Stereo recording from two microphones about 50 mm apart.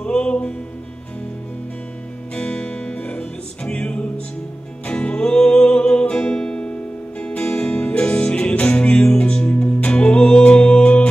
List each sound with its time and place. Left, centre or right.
0.0 s music: centre
2.3 s music: left